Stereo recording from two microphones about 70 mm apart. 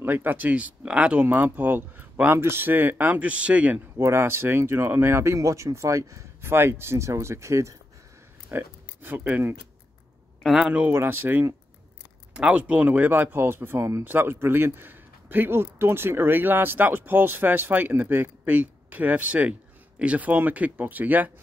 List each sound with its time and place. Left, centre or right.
0.0 s a man's voice: right
3.9 s speech: right
8.5 s speech: right
10.4 s speech: centre
10.9 s speech: right
12.4 s a man's voice: centre; by 14.0 s right
14.0 s a man's voice: right